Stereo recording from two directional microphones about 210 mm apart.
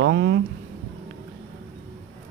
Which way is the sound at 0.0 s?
55° right (ahead or behind).